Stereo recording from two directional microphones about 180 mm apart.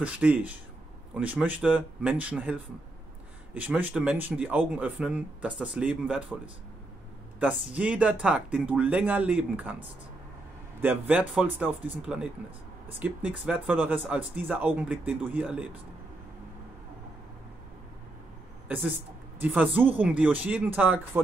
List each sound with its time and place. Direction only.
0.0 s speech: 10° right (ahead or behind)
13.0 s speech: 10° right (ahead or behind)
18.7 s speech: 10° right (ahead or behind)